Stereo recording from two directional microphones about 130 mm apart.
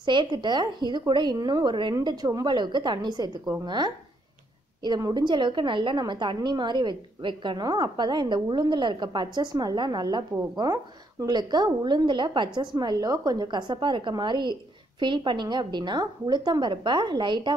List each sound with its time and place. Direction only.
0.0 s a woman's voice: 35° right (ahead or behind)